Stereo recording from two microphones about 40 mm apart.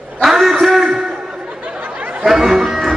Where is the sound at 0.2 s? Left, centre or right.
Centre.